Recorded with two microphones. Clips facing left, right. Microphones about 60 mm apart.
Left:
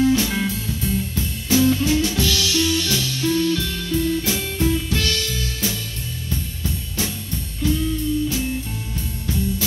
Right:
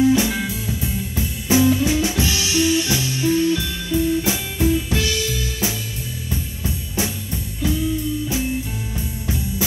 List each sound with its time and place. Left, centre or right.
0.0 s music: centre
7.6 s music: right
9.2 s music: right